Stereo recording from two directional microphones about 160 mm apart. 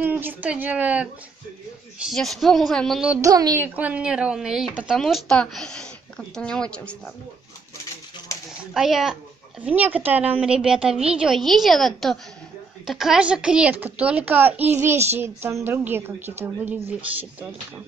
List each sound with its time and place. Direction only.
0.0 s speech: 10° right (ahead or behind)
2.0 s a woman's voice: centre (ahead or behind)
3.2 s speech: 25° right (ahead or behind)
3.6 s a woman's voice: 10° right (ahead or behind); by 7.0 s 5° left (ahead or behind)
8.7 s a woman's voice: centre (ahead or behind)